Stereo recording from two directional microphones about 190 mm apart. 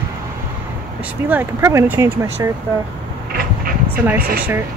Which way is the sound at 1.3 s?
10° right (ahead or behind).